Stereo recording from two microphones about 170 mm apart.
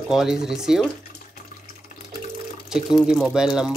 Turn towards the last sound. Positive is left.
turn(degrees=-5)  # may be behind; listen again after turning